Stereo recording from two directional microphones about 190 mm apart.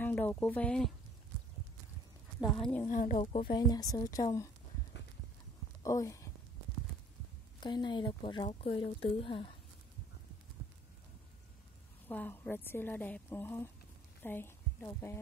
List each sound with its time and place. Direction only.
0.0 s speech: 10° left (ahead or behind)
2.4 s speech: centre (ahead or behind)
2.9 s speech: 45° left (ahead or behind)
3.5 s speech: 20° left (ahead or behind)
5.8 s speech: 15° left (ahead or behind)
7.6 s speech: 25° left (ahead or behind)
12.1 s a woman's voice: 10° left (ahead or behind)